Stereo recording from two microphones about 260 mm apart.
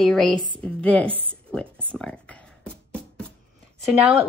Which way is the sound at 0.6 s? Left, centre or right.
Centre.